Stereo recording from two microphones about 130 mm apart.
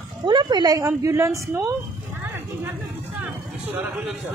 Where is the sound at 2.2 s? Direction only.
20° right (ahead or behind).